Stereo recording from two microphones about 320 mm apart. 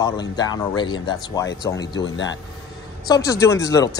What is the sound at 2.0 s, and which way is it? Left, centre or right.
Speech, left.